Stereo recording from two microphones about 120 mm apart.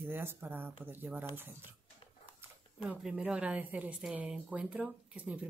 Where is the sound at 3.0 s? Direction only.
5° right (ahead or behind).